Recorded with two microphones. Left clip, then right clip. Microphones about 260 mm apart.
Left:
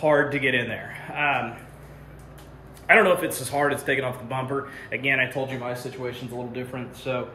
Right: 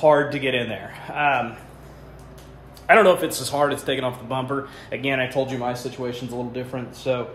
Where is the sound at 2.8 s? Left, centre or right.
Centre.